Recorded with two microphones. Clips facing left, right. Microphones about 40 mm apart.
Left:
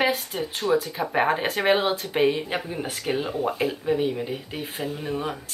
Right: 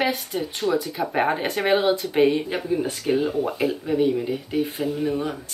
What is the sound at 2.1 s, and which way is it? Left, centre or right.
Speech, centre.